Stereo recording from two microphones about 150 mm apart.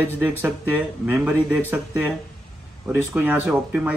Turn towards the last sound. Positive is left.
turn(degrees=-10)  # may be behind; listen again after turning